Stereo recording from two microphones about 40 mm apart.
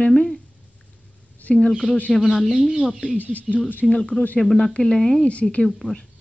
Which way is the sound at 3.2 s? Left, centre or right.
Left.